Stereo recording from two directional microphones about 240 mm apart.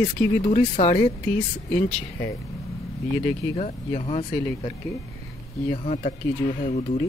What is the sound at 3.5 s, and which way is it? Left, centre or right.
A man's voice, left.